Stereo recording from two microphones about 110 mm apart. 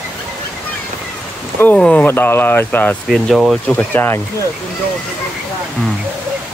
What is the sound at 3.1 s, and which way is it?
Speech, centre (ahead or behind).